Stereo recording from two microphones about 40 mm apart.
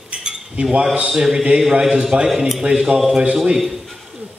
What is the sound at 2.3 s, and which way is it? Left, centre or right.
Speech, centre.